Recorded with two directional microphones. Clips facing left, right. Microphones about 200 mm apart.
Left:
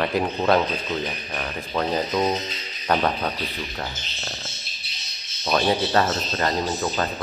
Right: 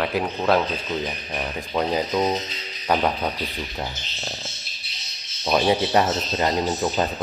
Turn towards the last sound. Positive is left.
turn(degrees=-15)  # may be behind; listen again after turning